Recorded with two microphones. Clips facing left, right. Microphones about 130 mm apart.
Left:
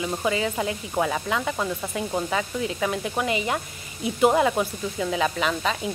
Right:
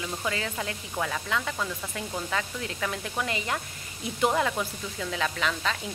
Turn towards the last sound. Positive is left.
turn(degrees=15)  # may be behind; listen again after turning